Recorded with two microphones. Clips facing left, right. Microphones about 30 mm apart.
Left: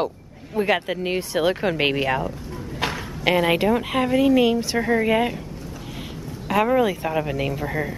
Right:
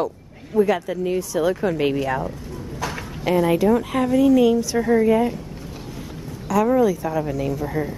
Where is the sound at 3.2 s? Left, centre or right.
Left.